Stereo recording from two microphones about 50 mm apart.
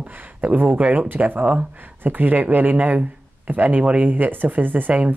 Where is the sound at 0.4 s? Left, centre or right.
Right.